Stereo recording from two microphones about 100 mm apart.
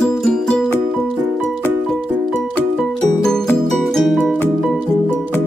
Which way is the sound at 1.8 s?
5° left (ahead or behind).